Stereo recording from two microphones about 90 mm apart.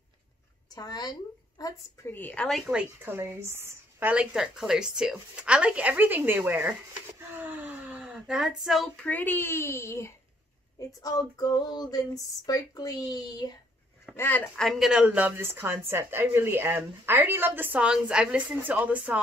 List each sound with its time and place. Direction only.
0.7 s a woman's voice: 45° left (ahead or behind)
2.0 s a child's voice: 25° left (ahead or behind)
2.3 s speech: 5° left (ahead or behind)
2.6 s speech: 10° right (ahead or behind)
3.1 s a woman's voice: 30° right (ahead or behind)
4.1 s speech: 10° right (ahead or behind)
7.3 s a sound: 20° right (ahead or behind); by 8.9 s centre (ahead or behind)
8.9 s a child's voice: 15° left (ahead or behind)
10.9 s female singing: 45° left (ahead or behind)
14.1 s a child's voice: 25° left (ahead or behind)
14.6 s speech: centre (ahead or behind)
15.0 s a woman's voice: 20° right (ahead or behind)
17.7 s speech: 10° right (ahead or behind)